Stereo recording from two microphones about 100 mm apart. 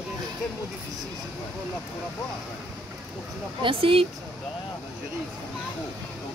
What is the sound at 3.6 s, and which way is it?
Speech, 65° right (ahead or behind).